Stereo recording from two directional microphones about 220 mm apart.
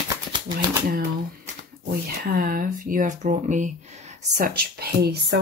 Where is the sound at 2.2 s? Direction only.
40° right (ahead or behind).